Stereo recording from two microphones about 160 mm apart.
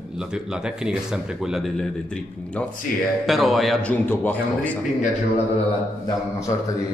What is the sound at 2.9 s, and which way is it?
Speech, 60° left (ahead or behind).